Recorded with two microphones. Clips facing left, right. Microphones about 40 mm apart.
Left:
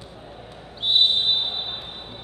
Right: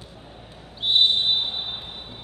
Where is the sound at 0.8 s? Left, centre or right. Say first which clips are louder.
Even; centre.